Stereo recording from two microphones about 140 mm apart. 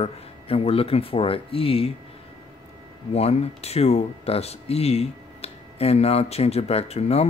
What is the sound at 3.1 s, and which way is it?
Speech, 45° left (ahead or behind).